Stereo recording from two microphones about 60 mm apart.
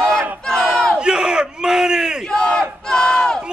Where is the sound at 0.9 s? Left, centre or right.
Centre.